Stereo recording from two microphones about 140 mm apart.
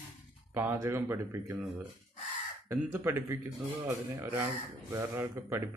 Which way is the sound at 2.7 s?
20° right (ahead or behind).